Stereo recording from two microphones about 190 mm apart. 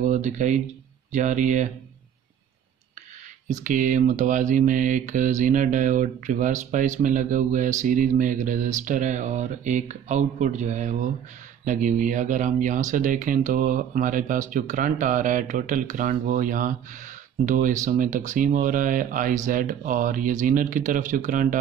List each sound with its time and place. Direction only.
0.0 s mantra: 40° right (ahead or behind)
3.4 s mantra: 40° right (ahead or behind)
11.6 s speech: 40° right (ahead or behind)